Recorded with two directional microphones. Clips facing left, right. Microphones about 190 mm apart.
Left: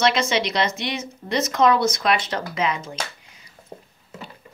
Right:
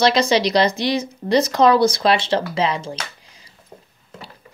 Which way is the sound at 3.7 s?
35° left (ahead or behind).